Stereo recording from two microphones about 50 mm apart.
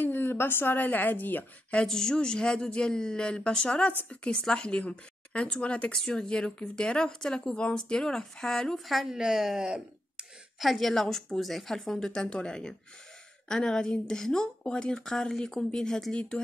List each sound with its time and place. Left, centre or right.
0.0 s a woman's voice: left
1.9 s a woman's voice: centre
8.8 s speech: centre
10.6 s a woman's voice: centre